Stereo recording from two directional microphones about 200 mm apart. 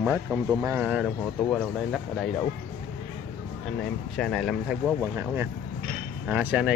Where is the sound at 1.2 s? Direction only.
5° left (ahead or behind).